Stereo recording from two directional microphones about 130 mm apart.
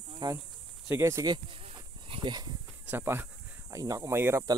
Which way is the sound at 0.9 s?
20° right (ahead or behind).